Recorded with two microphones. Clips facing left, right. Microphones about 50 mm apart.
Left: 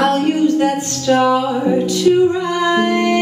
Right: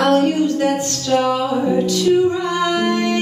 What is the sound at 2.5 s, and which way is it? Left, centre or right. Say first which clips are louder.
Music: left 3 dB; left.